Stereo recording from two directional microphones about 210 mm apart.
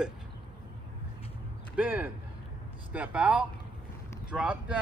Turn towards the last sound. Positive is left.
turn(degrees=-5)  # may be behind; listen again after turning